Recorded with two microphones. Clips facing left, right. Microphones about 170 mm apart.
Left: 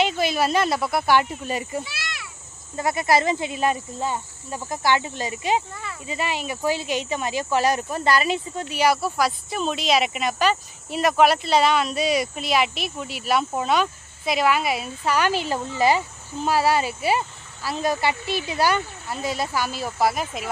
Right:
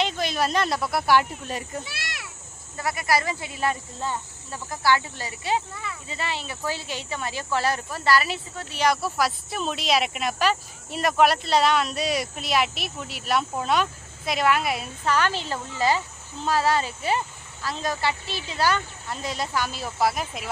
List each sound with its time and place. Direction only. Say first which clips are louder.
0.0 s speech: left 4 dB; 5° left (ahead or behind)
2.8 s speech: left 4 dB; 25° left (ahead or behind); by 20.4 s centre (ahead or behind)